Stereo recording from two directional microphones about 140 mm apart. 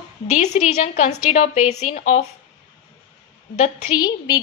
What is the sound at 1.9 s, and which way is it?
Speech, 90° left.